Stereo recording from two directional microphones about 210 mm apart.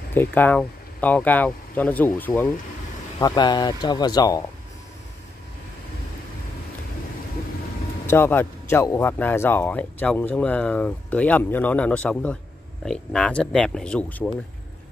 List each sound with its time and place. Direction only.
0.1 s speech: 10° left (ahead or behind)
8.1 s speech: 10° left (ahead or behind)